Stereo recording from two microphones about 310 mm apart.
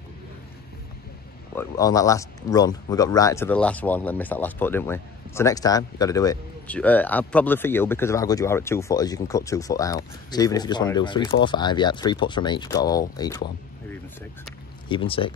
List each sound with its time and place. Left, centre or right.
1.5 s speech: centre
14.9 s speech: centre